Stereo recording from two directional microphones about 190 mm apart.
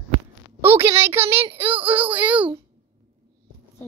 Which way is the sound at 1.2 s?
30° right (ahead or behind).